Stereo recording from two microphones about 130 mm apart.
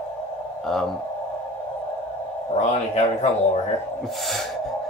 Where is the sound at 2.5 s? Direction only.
55° left (ahead or behind).